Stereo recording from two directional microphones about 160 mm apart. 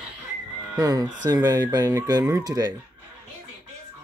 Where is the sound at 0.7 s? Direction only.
25° right (ahead or behind).